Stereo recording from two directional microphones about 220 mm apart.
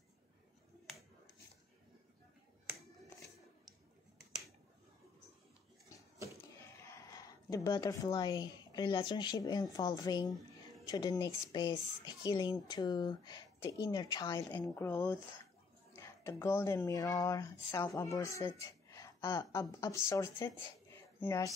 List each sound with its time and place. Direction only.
0.8 s finger snapping: centre (ahead or behind)
6.6 s speech: 10° left (ahead or behind)